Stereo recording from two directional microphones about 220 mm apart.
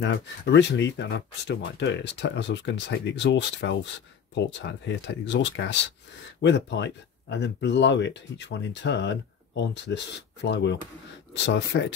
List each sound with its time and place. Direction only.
0.0 s speech: 55° left (ahead or behind)